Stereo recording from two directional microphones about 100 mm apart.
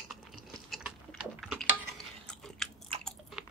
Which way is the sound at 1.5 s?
5° left (ahead or behind).